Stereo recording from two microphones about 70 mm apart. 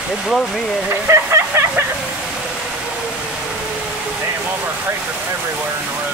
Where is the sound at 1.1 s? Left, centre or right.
Right.